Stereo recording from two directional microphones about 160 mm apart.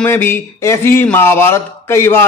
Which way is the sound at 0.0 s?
15° left (ahead or behind).